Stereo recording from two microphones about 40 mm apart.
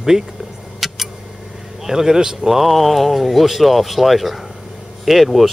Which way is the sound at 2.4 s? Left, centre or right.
Centre.